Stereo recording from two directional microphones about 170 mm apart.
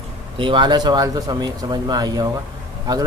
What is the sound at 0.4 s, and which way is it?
Speech, 30° right (ahead or behind).